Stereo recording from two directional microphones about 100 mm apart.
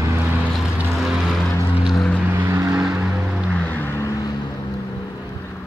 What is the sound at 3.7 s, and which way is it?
Vehicle, 20° left (ahead or behind).